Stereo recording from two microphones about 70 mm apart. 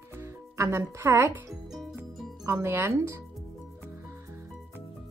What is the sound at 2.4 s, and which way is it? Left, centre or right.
Speech, right.